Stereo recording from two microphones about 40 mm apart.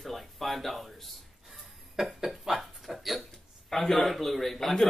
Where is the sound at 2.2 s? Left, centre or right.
Centre.